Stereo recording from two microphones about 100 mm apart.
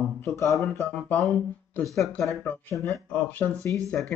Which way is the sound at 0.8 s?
15° left (ahead or behind).